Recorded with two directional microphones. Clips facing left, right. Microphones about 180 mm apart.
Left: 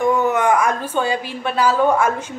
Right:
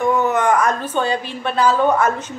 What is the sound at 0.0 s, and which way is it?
A woman's voice, 15° left (ahead or behind).